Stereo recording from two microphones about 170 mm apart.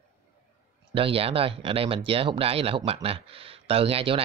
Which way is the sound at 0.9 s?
35° right (ahead or behind).